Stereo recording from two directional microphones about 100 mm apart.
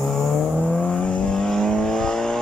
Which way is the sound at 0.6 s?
15° left (ahead or behind).